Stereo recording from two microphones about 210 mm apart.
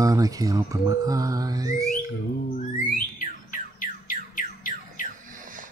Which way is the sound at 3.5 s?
40° left (ahead or behind).